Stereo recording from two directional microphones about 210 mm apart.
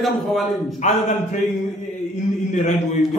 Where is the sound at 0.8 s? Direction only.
35° left (ahead or behind).